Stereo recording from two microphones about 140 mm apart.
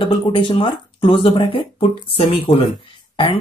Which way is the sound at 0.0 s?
35° left (ahead or behind).